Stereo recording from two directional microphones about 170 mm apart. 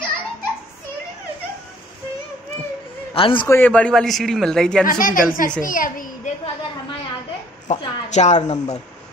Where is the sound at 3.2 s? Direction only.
30° left (ahead or behind).